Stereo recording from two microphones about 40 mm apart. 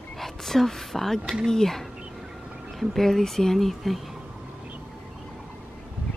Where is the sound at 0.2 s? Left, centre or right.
Centre.